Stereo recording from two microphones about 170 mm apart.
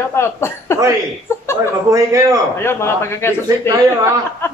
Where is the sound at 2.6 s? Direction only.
15° left (ahead or behind).